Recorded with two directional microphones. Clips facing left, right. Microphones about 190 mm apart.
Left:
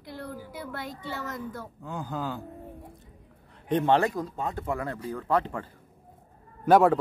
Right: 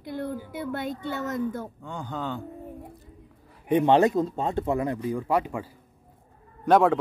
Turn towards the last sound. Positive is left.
turn(degrees=5)  # may be behind; listen again after turning